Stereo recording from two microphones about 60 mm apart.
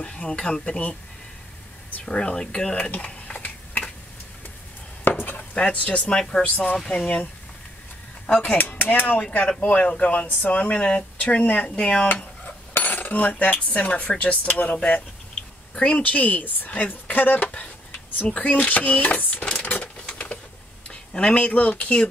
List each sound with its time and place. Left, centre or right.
0.0 s speech: centre
2.0 s mechanisms: centre
5.0 s chopping: left
5.4 s speech: centre
8.4 s speech: left
12.7 s speech: left
18.2 s speech: centre
19.6 s a sound: left
20.9 s speech: centre